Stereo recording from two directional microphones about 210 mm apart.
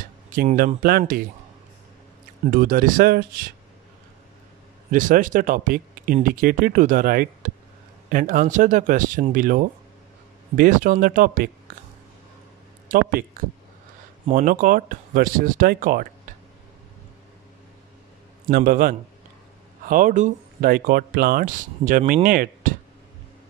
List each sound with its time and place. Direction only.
0.3 s speech: 40° right (ahead or behind)
2.4 s speech: 40° right (ahead or behind)
4.9 s speech: 40° right (ahead or behind)
12.8 s speech: 40° right (ahead or behind)
18.5 s speech: 45° right (ahead or behind)